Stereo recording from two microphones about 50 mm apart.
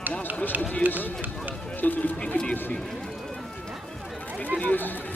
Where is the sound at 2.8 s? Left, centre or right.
Centre.